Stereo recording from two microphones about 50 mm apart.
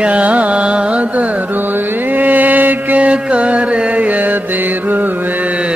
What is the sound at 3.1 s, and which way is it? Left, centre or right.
Mantra, right.